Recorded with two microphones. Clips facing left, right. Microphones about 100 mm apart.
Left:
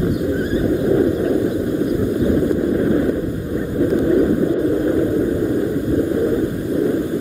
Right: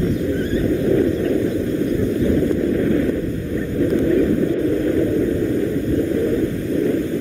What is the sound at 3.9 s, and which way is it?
Vehicle, 20° left (ahead or behind).